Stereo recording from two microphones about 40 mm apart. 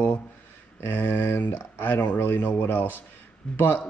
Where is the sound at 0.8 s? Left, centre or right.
Left.